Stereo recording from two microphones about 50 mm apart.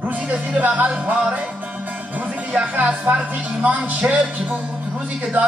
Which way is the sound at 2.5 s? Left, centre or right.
Right.